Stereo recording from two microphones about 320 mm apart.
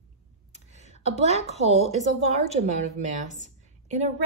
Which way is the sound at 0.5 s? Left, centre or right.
Right.